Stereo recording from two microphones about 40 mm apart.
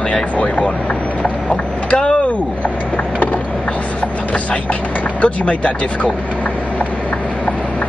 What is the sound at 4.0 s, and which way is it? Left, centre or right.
Vehicle, left.